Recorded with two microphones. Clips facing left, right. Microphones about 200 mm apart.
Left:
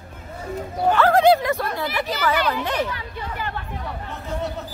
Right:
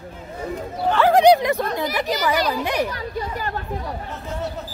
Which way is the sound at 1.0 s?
15° right (ahead or behind).